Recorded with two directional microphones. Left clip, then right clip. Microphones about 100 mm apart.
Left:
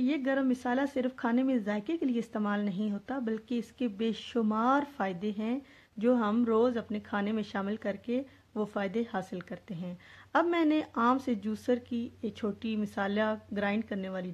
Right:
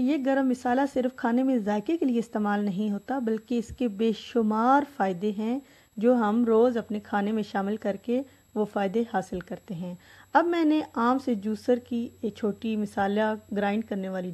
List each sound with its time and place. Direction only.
0.0 s speech: 40° right (ahead or behind)
1.7 s speech: 50° right (ahead or behind); by 14.3 s 25° right (ahead or behind)